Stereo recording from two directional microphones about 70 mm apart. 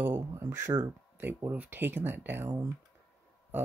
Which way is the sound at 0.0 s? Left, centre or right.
Right.